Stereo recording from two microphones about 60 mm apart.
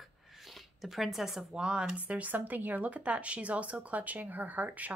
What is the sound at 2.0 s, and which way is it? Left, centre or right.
Speech, right.